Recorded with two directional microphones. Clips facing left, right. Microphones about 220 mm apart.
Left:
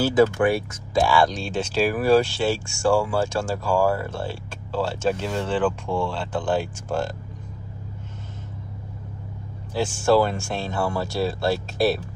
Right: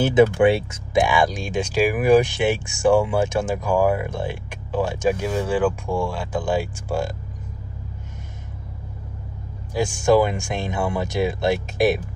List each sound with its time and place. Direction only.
0.0 s speech: 20° right (ahead or behind)
9.8 s speech: 15° right (ahead or behind)